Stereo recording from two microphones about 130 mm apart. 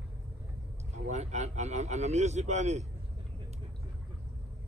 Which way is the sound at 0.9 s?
60° right (ahead or behind).